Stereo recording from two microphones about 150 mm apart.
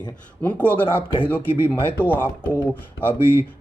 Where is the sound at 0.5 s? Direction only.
10° left (ahead or behind).